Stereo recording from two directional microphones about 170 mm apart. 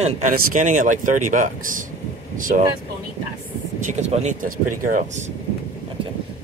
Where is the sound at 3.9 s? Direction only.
40° right (ahead or behind).